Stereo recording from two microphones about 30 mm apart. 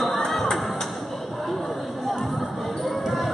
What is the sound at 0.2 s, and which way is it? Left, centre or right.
Crowd, centre.